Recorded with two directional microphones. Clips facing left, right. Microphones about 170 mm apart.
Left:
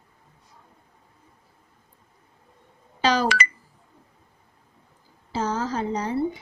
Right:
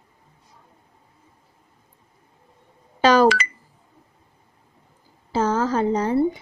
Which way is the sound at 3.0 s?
50° right (ahead or behind).